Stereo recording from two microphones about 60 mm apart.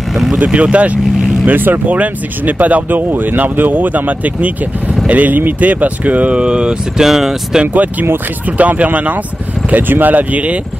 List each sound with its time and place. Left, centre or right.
0.1 s speech: centre
0.5 s speech: right
7.6 s speech: right